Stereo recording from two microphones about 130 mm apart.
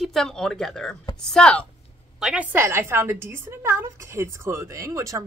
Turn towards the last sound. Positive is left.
turn(degrees=-25)  # may be behind; listen again after turning